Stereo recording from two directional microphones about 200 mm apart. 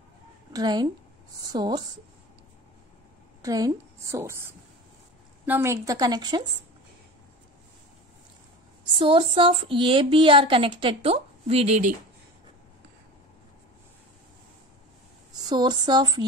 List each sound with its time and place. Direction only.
0.5 s a woman's voice: 20° right (ahead or behind)
3.4 s a woman's voice: 15° right (ahead or behind)
5.4 s a woman's voice: 10° right (ahead or behind)
8.9 s speech: 25° right (ahead or behind)
15.3 s speech: 20° right (ahead or behind)